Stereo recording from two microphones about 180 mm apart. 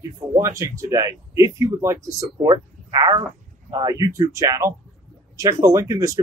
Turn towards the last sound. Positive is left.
turn(degrees=-20)  # may be behind; listen again after turning